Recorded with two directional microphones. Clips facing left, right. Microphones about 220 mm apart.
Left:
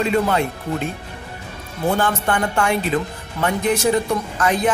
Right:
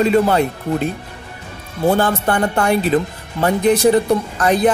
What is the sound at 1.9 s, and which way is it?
Speech, 35° right (ahead or behind).